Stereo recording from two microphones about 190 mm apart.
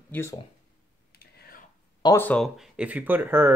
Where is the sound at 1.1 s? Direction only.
55° left (ahead or behind).